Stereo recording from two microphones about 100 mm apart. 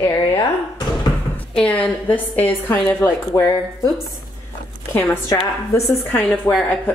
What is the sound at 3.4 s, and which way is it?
Speech, 35° left (ahead or behind).